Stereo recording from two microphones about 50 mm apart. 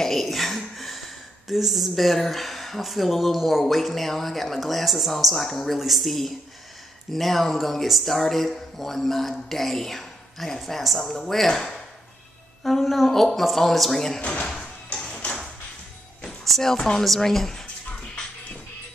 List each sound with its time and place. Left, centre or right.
0.0 s speech: centre
14.4 s music: centre
15.0 s a sound: centre
16.4 s music: centre
16.7 s speech: centre
17.0 s speech: centre